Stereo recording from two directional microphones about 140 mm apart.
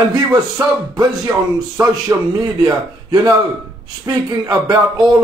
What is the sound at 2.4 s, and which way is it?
A man's voice, 30° right (ahead or behind).